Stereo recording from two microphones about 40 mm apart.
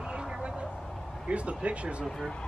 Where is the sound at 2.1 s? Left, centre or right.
Centre.